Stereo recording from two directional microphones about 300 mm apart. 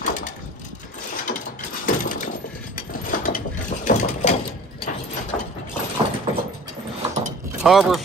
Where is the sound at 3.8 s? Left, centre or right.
Left.